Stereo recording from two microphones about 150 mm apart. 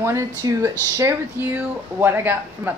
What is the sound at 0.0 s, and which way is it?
Speech, 20° right (ahead or behind).